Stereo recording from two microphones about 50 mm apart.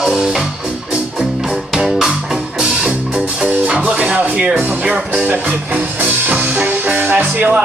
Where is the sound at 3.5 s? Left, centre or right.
Right.